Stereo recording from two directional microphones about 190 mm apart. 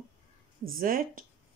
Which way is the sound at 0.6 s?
50° right (ahead or behind).